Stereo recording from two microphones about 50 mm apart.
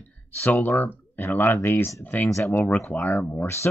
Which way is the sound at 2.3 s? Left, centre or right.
Left.